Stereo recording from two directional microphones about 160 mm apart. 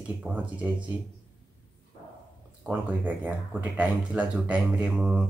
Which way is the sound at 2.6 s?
10° right (ahead or behind).